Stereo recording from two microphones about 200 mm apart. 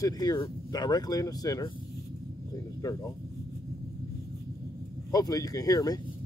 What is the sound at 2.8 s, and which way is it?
Speech, 15° left (ahead or behind).